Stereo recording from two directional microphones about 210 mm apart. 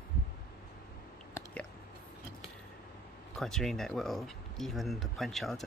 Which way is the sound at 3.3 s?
Centre (ahead or behind).